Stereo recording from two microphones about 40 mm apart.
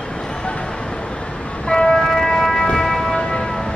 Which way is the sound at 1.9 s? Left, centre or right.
Centre.